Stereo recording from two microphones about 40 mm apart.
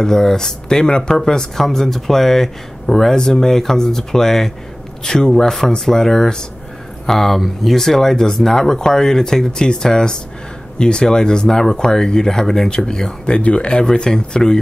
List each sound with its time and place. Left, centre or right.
0.0 s speech: centre
13.4 s speech: left